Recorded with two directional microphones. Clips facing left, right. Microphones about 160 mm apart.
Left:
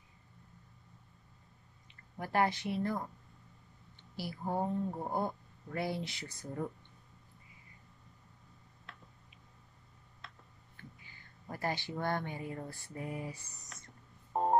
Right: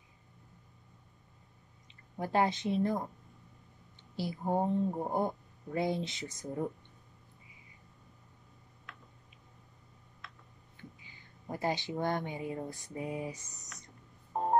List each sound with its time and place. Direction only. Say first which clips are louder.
1.9 s speech: right 4 dB; 20° right (ahead or behind)
4.2 s speech: right 4 dB; 20° right (ahead or behind)
10.8 s speech: right 2 dB; 15° right (ahead or behind)